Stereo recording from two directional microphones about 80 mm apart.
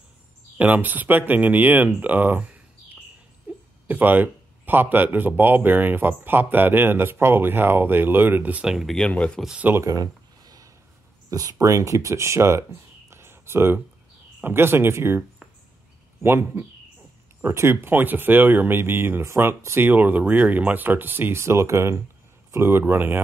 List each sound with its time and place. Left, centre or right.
0.6 s speech: right
3.5 s a sound: right
3.8 s speech: right
8.9 s speech: centre
9.8 s a sound: right
11.2 s speech: right